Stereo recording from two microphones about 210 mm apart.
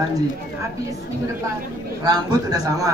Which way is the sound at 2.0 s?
20° right (ahead or behind).